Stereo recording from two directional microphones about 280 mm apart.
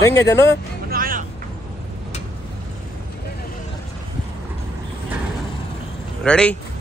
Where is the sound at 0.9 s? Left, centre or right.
Right.